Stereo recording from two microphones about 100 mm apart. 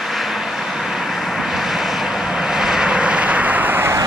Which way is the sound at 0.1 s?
Centre (ahead or behind).